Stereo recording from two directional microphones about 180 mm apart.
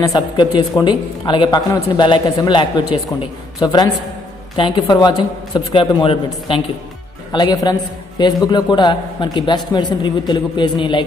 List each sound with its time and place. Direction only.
0.0 s speech: 20° left (ahead or behind)